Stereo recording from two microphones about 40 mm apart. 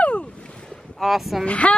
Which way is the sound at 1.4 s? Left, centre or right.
Left.